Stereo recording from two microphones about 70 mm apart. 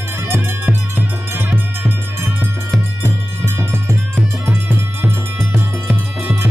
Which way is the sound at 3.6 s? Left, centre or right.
Right.